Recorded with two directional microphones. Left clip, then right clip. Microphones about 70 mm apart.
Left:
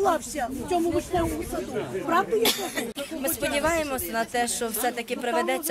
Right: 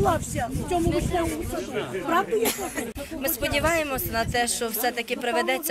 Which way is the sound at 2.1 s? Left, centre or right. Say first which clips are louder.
Left 1 dB; centre.